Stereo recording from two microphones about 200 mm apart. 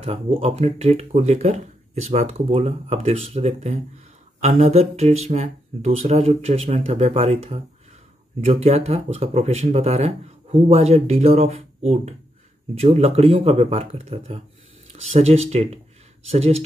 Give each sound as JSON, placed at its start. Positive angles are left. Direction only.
{"t": 0.0, "sound": "speech", "side_deg": -30}